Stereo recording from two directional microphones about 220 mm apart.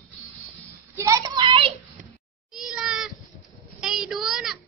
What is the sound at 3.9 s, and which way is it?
Child singing, centre (ahead or behind).